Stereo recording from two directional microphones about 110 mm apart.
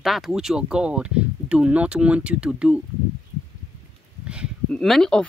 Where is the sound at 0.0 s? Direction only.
5° right (ahead or behind).